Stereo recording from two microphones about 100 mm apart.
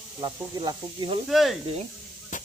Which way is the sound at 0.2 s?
50° right (ahead or behind).